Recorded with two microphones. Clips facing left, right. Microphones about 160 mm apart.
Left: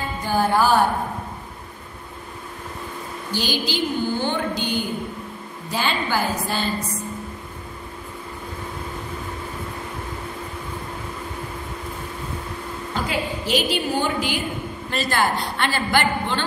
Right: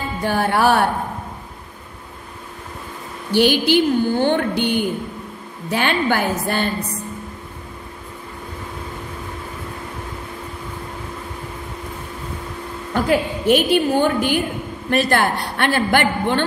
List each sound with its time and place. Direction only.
0.2 s speech: 65° right (ahead or behind)
3.3 s a woman's voice: 60° right (ahead or behind)
12.9 s a woman's voice: 55° right (ahead or behind)